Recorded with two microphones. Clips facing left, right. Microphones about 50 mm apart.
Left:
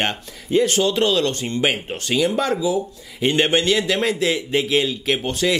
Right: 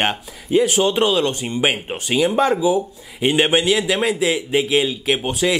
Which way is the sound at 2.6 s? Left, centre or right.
Right.